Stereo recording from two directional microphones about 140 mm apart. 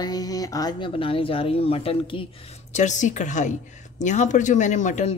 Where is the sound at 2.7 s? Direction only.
60° left (ahead or behind).